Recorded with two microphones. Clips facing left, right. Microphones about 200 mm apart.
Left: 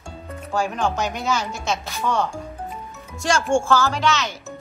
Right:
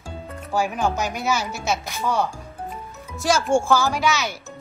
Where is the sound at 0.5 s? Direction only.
5° right (ahead or behind).